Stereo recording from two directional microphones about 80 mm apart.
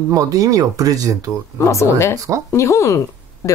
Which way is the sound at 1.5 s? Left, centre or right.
Left.